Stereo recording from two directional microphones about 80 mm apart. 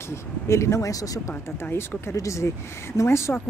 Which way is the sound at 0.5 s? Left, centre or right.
Left.